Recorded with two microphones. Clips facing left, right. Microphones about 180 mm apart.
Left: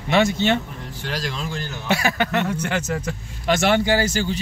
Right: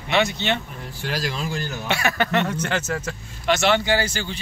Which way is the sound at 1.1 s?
5° right (ahead or behind).